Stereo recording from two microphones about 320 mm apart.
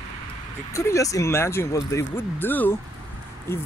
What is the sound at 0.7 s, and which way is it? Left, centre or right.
Speech, centre.